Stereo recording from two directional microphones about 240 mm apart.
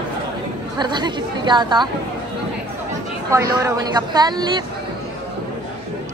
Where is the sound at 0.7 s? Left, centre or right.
Centre.